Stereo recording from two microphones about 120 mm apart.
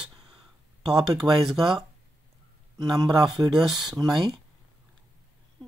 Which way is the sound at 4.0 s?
35° right (ahead or behind).